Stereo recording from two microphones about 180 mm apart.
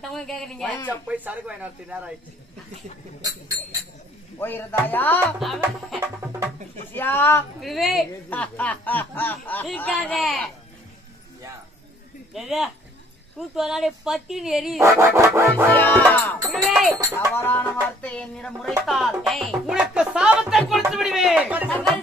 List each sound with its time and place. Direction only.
0.0 s speech: centre (ahead or behind)
0.8 s speech: 10° right (ahead or behind)
4.4 s speech: 10° left (ahead or behind)
5.4 s speech: centre (ahead or behind)
6.9 s speech: 10° left (ahead or behind)
7.6 s speech: centre (ahead or behind)
12.4 s speech: centre (ahead or behind)
14.8 s speech: 15° right (ahead or behind)
15.7 s speech: 10° left (ahead or behind)
17.4 s speech: 10° left (ahead or behind)
18.9 s music: centre (ahead or behind)
21.6 s speech: 10° left (ahead or behind)